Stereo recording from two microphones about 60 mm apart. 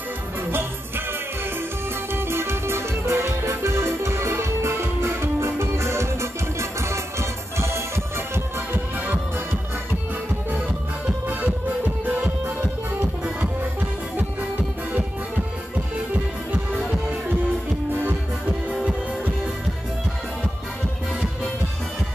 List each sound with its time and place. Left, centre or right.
0.5 s music: right
2.1 s music: right
8.7 s music: right
11.1 s music: right